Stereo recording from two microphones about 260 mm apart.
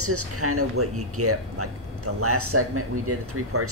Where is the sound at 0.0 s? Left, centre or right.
Right.